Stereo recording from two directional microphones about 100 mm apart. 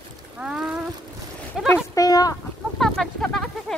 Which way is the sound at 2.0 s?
35° left (ahead or behind).